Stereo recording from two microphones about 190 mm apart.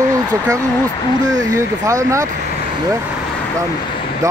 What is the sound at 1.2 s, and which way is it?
Speech, 20° right (ahead or behind).